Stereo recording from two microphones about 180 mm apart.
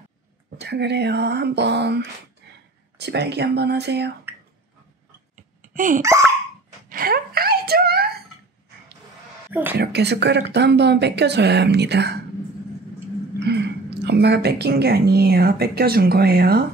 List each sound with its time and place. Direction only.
0.6 s speech: 65° right (ahead or behind)
5.6 s hiccup: 45° right (ahead or behind)
6.9 s a sound: 55° right (ahead or behind)
9.5 s speech: 10° right (ahead or behind)
9.8 s speech: 65° right (ahead or behind)
13.4 s a woman's voice: 65° right (ahead or behind)